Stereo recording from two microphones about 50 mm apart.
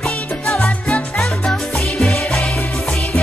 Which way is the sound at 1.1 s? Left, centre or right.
Centre.